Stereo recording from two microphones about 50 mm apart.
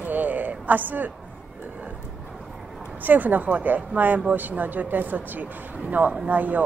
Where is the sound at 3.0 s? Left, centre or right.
Right.